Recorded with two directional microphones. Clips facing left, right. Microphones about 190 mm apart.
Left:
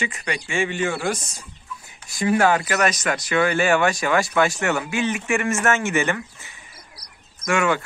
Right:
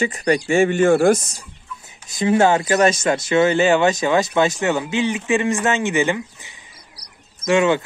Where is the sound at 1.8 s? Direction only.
20° right (ahead or behind).